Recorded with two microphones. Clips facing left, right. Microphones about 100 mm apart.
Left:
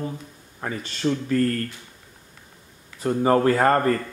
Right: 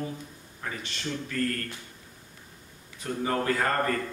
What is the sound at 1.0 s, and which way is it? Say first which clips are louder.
Speech: left 11 dB; 65° left (ahead or behind).